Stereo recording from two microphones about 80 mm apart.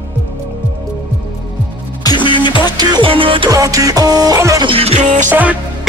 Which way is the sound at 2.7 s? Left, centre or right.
Right.